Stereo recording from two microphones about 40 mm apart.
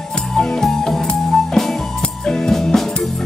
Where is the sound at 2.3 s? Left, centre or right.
Centre.